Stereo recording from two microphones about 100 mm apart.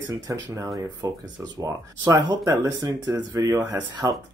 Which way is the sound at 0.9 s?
45° right (ahead or behind).